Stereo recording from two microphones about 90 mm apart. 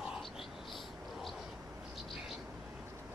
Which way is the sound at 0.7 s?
Centre (ahead or behind).